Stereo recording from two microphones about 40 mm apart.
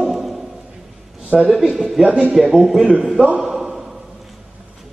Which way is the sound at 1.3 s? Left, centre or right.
Right.